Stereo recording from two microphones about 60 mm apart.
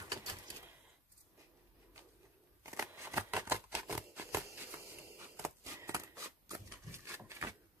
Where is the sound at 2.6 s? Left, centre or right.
Right.